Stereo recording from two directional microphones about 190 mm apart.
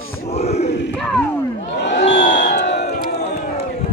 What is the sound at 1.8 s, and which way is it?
Crowd, 65° left (ahead or behind).